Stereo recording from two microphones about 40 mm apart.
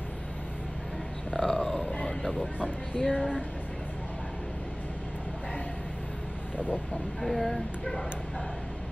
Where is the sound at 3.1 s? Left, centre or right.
Centre.